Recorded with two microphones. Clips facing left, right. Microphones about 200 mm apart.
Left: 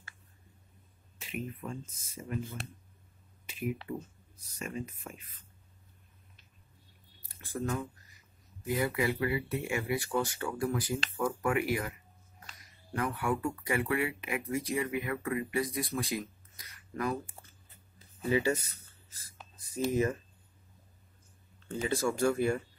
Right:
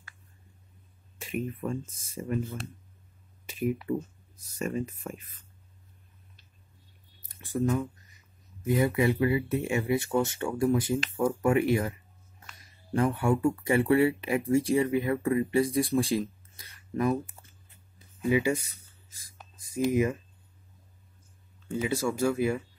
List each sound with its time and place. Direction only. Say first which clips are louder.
1.2 s speech: right 7 dB; 50° right (ahead or behind)
3.4 s speech: right 7 dB; 45° right (ahead or behind)
8.6 s speech: right 6 dB; 25° right (ahead or behind)
17.9 s writing: right 4 dB; 15° right (ahead or behind)
21.6 s speech: right 2 dB; 10° right (ahead or behind)